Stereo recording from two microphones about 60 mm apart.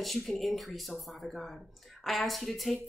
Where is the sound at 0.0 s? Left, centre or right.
Centre.